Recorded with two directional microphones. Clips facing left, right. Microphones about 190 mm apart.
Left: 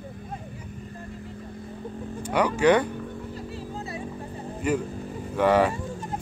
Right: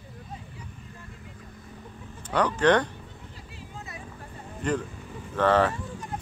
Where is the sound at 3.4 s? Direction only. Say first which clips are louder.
Left 9 dB; 40° left (ahead or behind).